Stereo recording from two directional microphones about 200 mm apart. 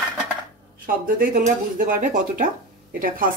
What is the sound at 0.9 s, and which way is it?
Speech, 45° right (ahead or behind).